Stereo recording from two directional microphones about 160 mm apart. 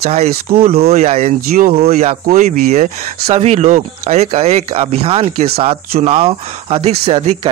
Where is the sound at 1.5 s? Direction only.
65° right (ahead or behind).